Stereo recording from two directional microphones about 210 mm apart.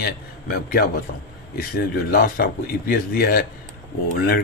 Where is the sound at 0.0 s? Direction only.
45° left (ahead or behind).